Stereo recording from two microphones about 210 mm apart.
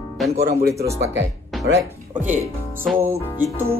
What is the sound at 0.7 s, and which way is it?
Speech, 15° right (ahead or behind).